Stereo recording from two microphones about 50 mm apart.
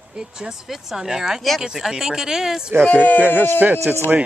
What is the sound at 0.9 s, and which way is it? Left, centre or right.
Speech, centre.